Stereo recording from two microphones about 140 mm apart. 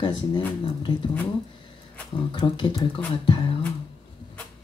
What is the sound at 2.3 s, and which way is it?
Speech, 35° left (ahead or behind).